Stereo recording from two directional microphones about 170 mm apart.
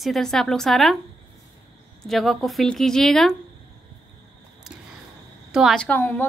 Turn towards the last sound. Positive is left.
turn(degrees=10)  # may be behind; listen again after turning